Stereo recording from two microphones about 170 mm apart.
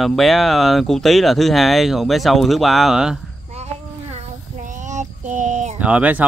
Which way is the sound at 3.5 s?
40° right (ahead or behind).